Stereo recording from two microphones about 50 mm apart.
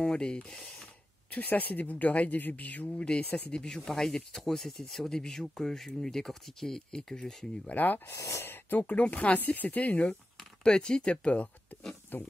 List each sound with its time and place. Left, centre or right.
0.0 s speech: centre
1.3 s speech: left
3.5 s speech: centre
7.6 s speech: left
8.1 s speech: left
8.5 s speech: left
10.6 s speech: centre
12.1 s speech: left